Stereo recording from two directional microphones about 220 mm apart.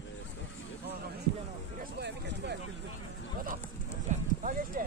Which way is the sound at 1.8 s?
50° right (ahead or behind).